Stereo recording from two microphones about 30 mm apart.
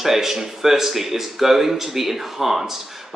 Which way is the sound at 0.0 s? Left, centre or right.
Centre.